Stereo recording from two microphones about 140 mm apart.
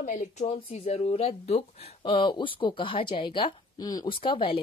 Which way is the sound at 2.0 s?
35° left (ahead or behind).